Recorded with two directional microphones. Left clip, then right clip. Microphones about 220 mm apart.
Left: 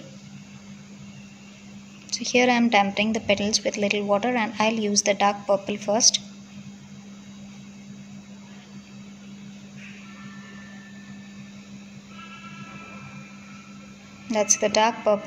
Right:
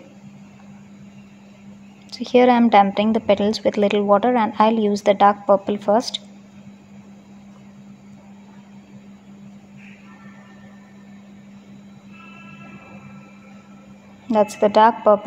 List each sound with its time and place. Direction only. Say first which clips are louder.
2.0 s a woman's voice: right 6 dB; 20° right (ahead or behind)
14.2 s a woman's voice: right 5 dB; 20° right (ahead or behind)